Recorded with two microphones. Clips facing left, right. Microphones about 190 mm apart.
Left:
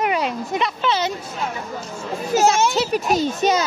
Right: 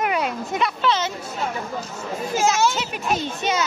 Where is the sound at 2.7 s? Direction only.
40° left (ahead or behind).